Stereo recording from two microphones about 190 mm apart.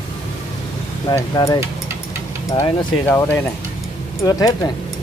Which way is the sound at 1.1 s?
20° left (ahead or behind).